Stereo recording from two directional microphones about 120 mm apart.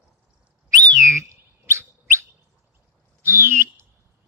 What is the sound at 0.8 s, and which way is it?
Bird, 25° right (ahead or behind).